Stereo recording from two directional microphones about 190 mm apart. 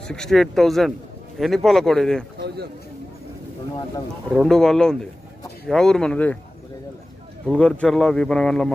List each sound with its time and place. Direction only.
0.1 s speech: 5° left (ahead or behind)
2.4 s a sound: 60° right (ahead or behind)
4.4 s speech: 5° left (ahead or behind)
7.4 s speech: 5° left (ahead or behind)